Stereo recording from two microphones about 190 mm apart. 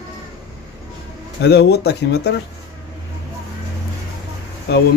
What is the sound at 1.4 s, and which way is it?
Speech, 60° left (ahead or behind).